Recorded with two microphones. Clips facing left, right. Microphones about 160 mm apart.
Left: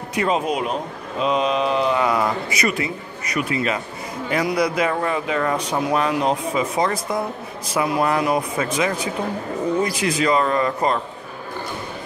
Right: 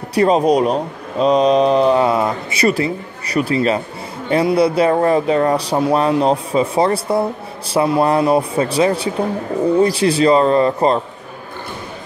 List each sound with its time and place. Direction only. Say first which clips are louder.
0.1 s speech: right 8 dB; 35° right (ahead or behind)